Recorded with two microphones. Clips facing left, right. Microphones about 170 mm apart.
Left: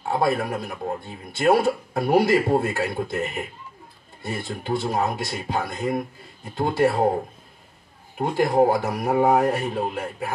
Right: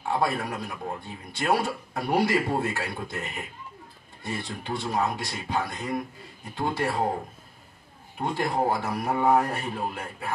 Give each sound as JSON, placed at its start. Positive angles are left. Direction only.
{"t": 0.1, "sound": "speech", "side_deg": 45}
{"t": 8.2, "sound": "speech", "side_deg": 45}